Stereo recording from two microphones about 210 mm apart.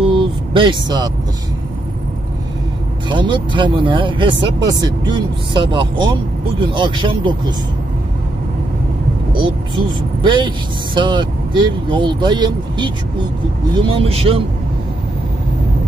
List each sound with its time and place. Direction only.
0.1 s vehicle: 25° right (ahead or behind)
3.1 s speech: 25° right (ahead or behind)
9.3 s speech: 25° right (ahead or behind)